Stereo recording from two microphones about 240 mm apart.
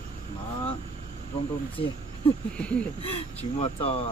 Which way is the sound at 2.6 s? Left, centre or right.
Centre.